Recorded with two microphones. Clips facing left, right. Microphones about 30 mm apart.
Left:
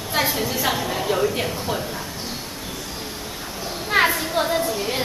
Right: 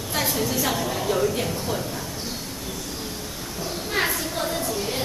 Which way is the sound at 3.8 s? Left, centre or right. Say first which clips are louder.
Left 7 dB; left.